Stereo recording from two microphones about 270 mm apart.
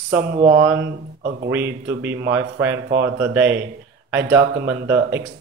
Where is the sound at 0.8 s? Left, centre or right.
Right.